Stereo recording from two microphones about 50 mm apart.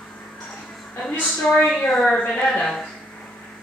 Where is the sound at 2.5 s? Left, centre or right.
Centre.